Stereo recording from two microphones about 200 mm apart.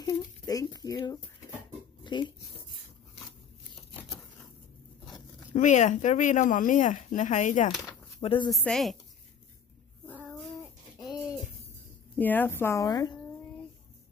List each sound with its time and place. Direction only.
0.0 s a sound: 20° left (ahead or behind)
2.0 s speech: 25° left (ahead or behind)
5.5 s speech: 35° left (ahead or behind)
8.2 s speech: 30° left (ahead or behind)
8.6 s a woman's voice: centre (ahead or behind)
12.2 s a woman's voice: 10° left (ahead or behind)